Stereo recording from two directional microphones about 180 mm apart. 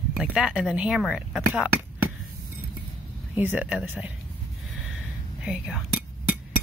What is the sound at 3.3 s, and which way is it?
Speech, 10° right (ahead or behind).